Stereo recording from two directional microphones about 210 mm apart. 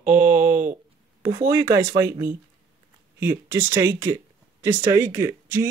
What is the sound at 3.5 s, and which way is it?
Speech, 10° right (ahead or behind).